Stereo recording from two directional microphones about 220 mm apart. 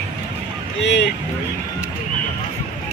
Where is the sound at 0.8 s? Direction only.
50° left (ahead or behind).